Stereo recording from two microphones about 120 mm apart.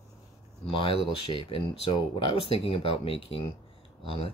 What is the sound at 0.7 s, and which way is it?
Speech, 45° left (ahead or behind).